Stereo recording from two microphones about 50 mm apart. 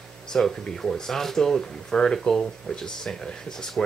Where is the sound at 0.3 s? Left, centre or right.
Centre.